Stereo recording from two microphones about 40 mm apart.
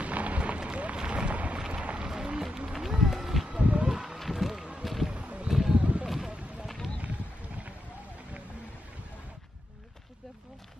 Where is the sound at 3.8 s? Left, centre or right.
Centre.